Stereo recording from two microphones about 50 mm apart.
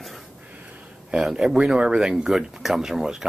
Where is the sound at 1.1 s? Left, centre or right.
Centre.